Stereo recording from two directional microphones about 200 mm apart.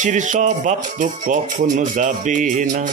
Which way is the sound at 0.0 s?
40° right (ahead or behind).